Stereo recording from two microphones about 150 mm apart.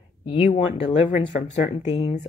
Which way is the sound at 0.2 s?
40° left (ahead or behind).